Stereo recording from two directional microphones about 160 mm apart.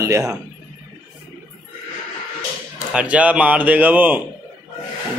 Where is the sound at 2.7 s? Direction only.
5° right (ahead or behind).